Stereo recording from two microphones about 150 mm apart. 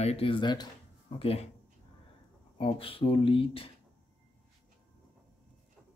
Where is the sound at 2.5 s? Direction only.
40° left (ahead or behind).